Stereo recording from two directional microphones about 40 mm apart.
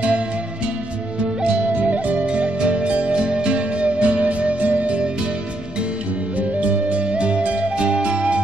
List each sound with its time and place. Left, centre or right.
1.8 s music: right
2.2 s music: right
6.6 s music: right